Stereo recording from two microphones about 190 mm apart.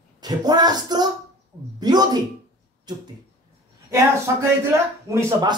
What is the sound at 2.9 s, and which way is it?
Speech, 20° right (ahead or behind).